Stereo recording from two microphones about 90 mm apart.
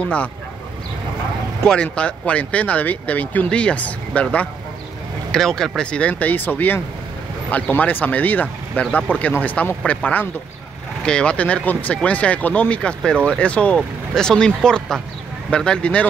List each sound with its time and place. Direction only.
1.6 s speech: 10° left (ahead or behind)